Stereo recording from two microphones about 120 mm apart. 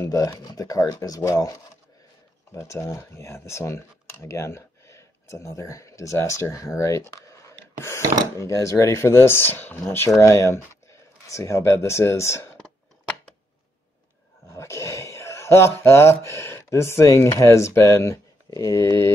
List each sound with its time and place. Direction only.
0.0 s speech: 25° left (ahead or behind)
2.5 s speech: 25° left (ahead or behind)
12.5 s clicking: 5° left (ahead or behind)
14.5 s speech: 25° left (ahead or behind)